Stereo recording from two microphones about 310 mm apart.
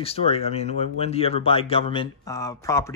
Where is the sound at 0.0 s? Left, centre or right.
Centre.